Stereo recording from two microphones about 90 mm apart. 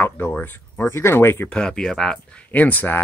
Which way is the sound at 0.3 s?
20° left (ahead or behind).